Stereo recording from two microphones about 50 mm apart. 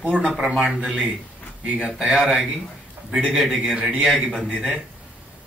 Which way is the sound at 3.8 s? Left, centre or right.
Right.